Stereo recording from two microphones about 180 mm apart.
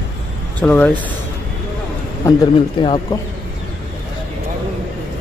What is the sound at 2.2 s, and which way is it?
Speech, 25° left (ahead or behind).